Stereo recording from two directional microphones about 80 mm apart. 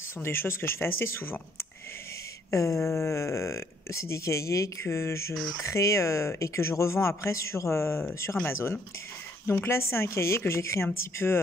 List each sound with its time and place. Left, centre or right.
0.2 s speech: left
9.5 s speech: left